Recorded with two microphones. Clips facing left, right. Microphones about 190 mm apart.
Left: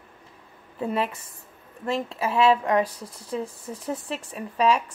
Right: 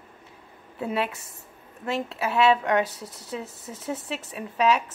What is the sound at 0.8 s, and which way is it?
A woman's voice, 5° right (ahead or behind).